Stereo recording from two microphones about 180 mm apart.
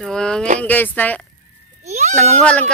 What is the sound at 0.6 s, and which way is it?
Speech, 10° left (ahead or behind).